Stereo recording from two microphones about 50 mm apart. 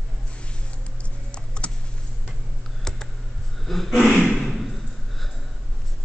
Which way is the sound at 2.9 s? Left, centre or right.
Centre.